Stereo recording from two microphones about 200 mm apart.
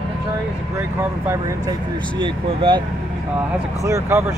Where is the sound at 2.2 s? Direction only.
25° right (ahead or behind).